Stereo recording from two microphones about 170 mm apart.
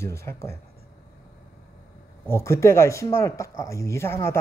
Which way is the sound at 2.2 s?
15° left (ahead or behind).